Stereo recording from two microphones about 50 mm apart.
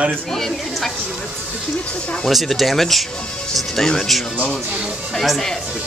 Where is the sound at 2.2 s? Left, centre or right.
Centre.